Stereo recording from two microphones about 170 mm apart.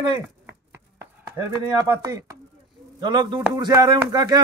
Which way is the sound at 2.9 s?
25° right (ahead or behind).